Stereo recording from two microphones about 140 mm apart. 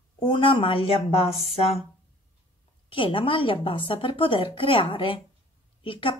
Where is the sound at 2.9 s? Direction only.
40° left (ahead or behind).